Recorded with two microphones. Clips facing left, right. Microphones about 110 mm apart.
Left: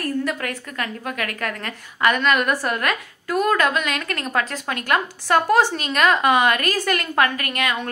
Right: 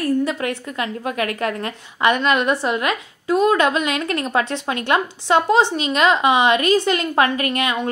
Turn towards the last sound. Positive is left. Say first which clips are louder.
# right 4 dB
turn(degrees=-20)  # may be behind; listen again after turning